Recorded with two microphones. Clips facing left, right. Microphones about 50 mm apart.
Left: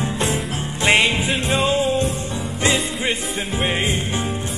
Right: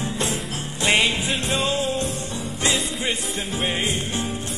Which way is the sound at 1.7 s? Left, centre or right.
Centre.